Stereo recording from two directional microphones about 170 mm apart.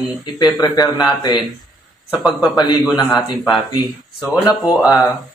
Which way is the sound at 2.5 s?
25° left (ahead or behind).